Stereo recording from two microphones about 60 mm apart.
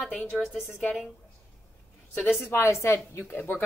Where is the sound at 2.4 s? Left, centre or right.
Left.